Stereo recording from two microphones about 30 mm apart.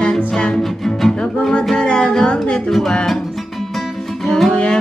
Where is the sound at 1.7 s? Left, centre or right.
Left.